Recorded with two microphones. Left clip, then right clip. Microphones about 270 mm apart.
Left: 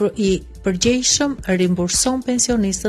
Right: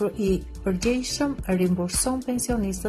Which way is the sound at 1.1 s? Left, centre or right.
Left.